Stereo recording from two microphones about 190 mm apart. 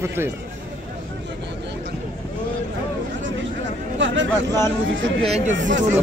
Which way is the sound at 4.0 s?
75° right (ahead or behind).